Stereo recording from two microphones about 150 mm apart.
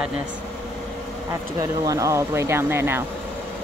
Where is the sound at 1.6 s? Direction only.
20° right (ahead or behind).